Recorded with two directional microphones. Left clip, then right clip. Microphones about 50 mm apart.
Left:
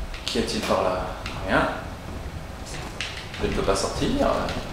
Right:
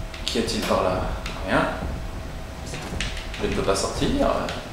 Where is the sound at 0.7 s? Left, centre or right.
Centre.